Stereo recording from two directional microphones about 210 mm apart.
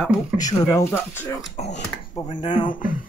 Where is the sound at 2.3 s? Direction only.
20° left (ahead or behind).